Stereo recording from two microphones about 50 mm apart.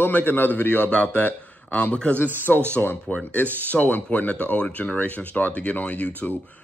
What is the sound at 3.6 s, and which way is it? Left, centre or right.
Speech, left.